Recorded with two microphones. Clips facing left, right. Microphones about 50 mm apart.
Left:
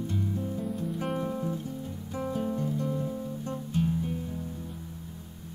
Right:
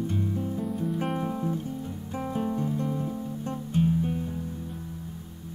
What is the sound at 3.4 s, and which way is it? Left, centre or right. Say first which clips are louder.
Music: right 4 dB; right.